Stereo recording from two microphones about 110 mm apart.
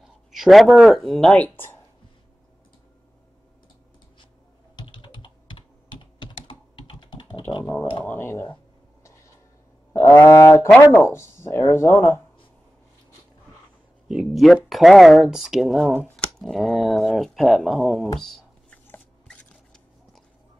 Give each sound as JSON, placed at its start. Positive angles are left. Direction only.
{"t": 0.3, "sound": "speech", "side_deg": 0}
{"t": 4.7, "sound": "computer keyboard", "side_deg": 45}
{"t": 7.6, "sound": "speech", "side_deg": 10}
{"t": 9.9, "sound": "speech", "side_deg": 25}
{"t": 14.0, "sound": "speech", "side_deg": -5}
{"t": 18.2, "sound": "a sound", "side_deg": 5}
{"t": 19.2, "sound": "biting", "side_deg": 5}